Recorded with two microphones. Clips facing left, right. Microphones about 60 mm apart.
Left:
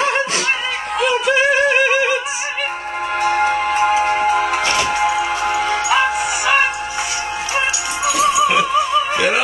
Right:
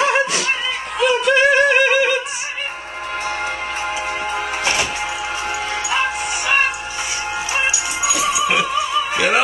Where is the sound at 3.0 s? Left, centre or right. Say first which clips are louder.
Left 7 dB; left.